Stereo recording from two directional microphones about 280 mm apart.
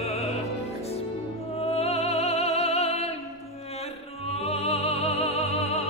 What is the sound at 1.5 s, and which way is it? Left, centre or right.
Music, left.